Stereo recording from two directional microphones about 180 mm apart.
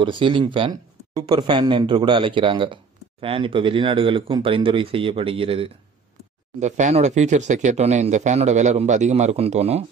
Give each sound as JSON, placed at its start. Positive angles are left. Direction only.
{"t": 0.0, "sound": "speech", "side_deg": -30}